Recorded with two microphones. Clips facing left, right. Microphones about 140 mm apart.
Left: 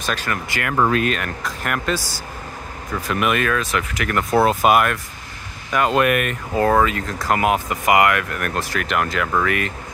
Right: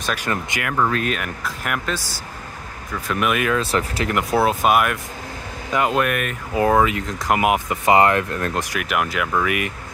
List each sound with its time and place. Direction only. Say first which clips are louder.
0.5 s speech: left 1 dB; 15° right (ahead or behind)
0.9 s speech: left 3 dB; 5° right (ahead or behind)
3.1 s speech: left 1 dB; centre (ahead or behind)
3.5 s speech: right 2 dB; 30° right (ahead or behind)
4.1 s speech: left 1 dB; 15° right (ahead or behind)
4.4 s speech: left 2 dB; centre (ahead or behind)
5.7 s speech: left 1 dB; 20° right (ahead or behind)
5.9 s speech: left 3 dB; 5° left (ahead or behind)
6.5 s speech: even; 15° right (ahead or behind)